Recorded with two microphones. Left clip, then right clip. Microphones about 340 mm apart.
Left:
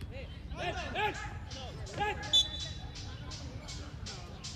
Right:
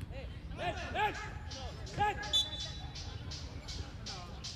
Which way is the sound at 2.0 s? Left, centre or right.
Centre.